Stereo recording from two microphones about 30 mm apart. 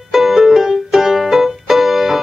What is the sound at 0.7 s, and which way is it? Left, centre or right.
Music, centre.